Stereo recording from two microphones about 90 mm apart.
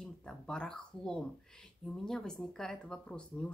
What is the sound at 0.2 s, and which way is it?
Speech, 10° left (ahead or behind).